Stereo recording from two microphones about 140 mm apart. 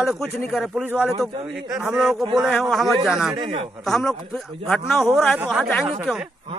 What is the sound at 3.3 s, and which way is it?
Speech, 45° right (ahead or behind).